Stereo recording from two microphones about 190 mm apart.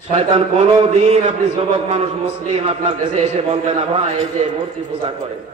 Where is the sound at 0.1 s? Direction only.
35° right (ahead or behind).